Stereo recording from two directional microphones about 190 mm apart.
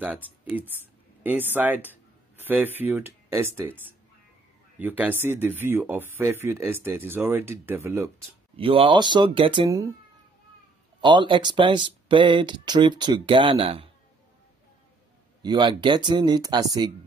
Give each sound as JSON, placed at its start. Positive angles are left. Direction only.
{"t": 0.5, "sound": "speech", "side_deg": -10}
{"t": 8.5, "sound": "speech", "side_deg": -30}
{"t": 11.0, "sound": "speech", "side_deg": -25}
{"t": 15.4, "sound": "speech", "side_deg": -25}